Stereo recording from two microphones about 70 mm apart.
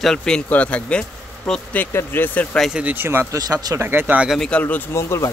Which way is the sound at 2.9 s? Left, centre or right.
Right.